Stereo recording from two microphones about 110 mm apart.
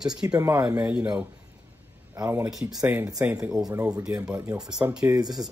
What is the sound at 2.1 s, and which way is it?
Speech, 30° right (ahead or behind).